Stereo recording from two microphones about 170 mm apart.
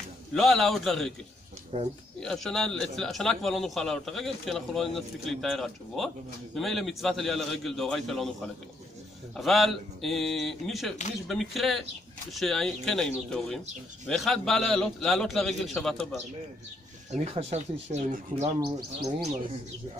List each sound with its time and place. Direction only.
0.3 s a man's voice: centre (ahead or behind)
1.7 s speech: 35° right (ahead or behind)
2.1 s a man's voice: centre (ahead or behind)
9.4 s a man's voice: centre (ahead or behind)
17.1 s speech: 40° right (ahead or behind)
18.6 s speech: 65° right (ahead or behind)